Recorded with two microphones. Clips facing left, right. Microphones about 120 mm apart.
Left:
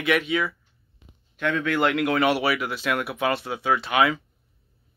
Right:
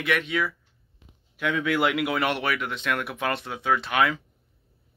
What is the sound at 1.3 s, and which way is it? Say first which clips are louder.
Speech: left 1 dB; 10° right (ahead or behind).